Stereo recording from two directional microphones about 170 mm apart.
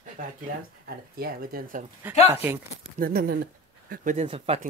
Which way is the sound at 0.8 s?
60° right (ahead or behind).